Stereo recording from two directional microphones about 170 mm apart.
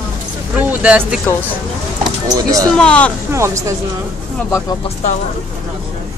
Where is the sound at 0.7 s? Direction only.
10° right (ahead or behind).